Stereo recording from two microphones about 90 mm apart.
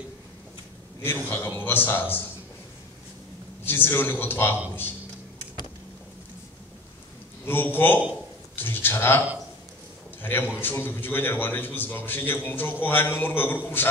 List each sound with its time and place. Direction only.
1.0 s a man's voice: 25° left (ahead or behind)
3.6 s a man's voice: 25° left (ahead or behind)
7.4 s a man's voice: 25° left (ahead or behind)
10.2 s a man's voice: 25° left (ahead or behind)